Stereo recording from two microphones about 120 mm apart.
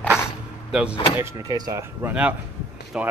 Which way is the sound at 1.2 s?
25° right (ahead or behind).